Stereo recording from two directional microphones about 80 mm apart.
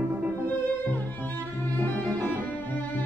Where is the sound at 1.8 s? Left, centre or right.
Left.